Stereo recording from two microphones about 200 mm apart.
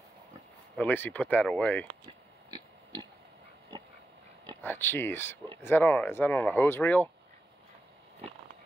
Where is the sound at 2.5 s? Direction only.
20° right (ahead or behind).